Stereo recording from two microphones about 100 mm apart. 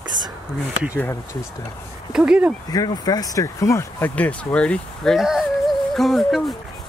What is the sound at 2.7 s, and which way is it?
Speech, 40° left (ahead or behind).